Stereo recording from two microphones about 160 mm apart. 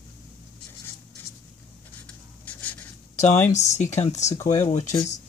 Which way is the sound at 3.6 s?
45° left (ahead or behind).